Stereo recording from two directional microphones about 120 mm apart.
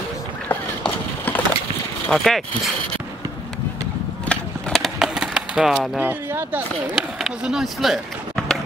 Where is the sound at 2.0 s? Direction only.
5° left (ahead or behind).